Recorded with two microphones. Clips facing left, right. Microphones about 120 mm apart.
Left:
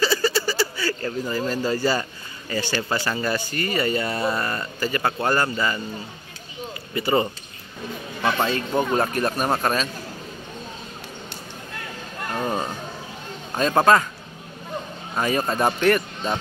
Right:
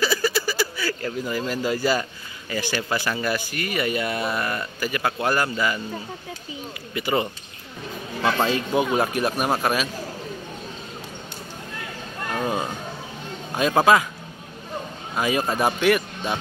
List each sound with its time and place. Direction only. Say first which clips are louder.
0.0 s a sound: left 1 dB; 10° right (ahead or behind)
2.5 s speech: left 1 dB; 10° right (ahead or behind)
6.9 s speech: left 2 dB; 5° right (ahead or behind)
8.5 s speech: right 1 dB; 15° right (ahead or behind)
13.6 s speech: even; 10° right (ahead or behind)
15.1 s speech: even; 5° right (ahead or behind)